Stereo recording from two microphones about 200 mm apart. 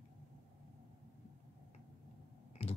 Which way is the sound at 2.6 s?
30° left (ahead or behind).